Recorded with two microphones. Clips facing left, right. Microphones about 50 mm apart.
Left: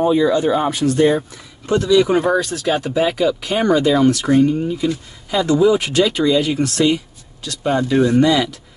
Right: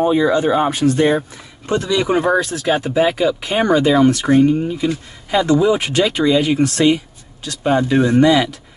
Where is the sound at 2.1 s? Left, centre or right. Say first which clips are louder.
Right 1 dB; centre.